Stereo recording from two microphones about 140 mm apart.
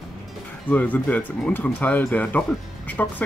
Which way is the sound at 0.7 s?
10° left (ahead or behind).